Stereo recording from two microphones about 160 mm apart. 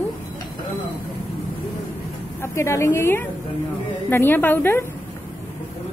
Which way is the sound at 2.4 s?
15° left (ahead or behind).